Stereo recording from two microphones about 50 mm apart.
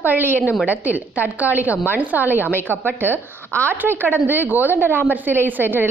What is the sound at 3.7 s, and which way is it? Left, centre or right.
A woman's voice, right.